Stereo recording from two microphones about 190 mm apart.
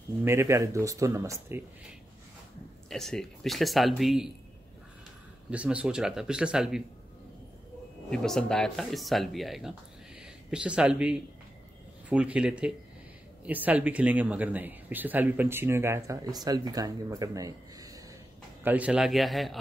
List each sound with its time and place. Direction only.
0.2 s speech: 15° right (ahead or behind)
2.9 s speech: centre (ahead or behind)
5.5 s speech: 5° right (ahead or behind)
8.1 s speech: 5° left (ahead or behind); by 18.0 s 20° right (ahead or behind)
18.6 s speech: 10° right (ahead or behind)